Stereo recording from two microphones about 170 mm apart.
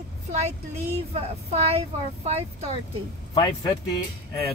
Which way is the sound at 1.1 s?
35° right (ahead or behind).